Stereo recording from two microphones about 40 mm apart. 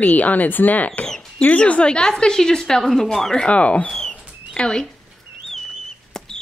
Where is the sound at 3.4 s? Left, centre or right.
Left.